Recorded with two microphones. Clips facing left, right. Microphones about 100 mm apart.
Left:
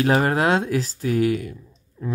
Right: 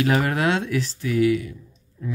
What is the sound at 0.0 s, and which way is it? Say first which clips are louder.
Speech: left 2 dB; 35° left (ahead or behind).